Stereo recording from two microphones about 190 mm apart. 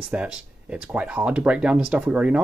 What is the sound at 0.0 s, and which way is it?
Speech, 5° right (ahead or behind).